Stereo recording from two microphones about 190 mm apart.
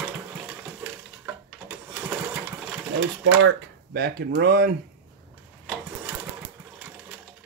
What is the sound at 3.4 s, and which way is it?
Speech, 60° right (ahead or behind).